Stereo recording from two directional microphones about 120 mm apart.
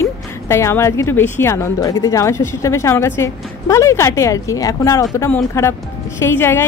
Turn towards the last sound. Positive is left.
turn(degrees=20)  # may be behind; listen again after turning